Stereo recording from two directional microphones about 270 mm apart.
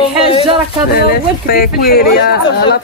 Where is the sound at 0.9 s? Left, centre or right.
Left.